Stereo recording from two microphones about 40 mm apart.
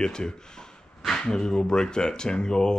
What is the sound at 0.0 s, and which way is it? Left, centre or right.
Speech, centre.